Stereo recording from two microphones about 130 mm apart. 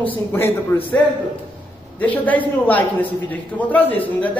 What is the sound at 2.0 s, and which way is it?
A man's voice, 10° left (ahead or behind).